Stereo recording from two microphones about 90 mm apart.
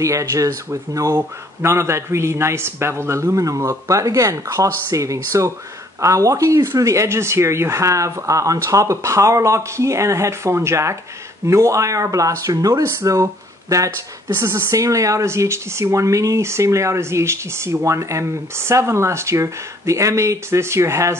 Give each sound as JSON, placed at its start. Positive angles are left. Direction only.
{"t": 0.0, "sound": "speech", "side_deg": -35}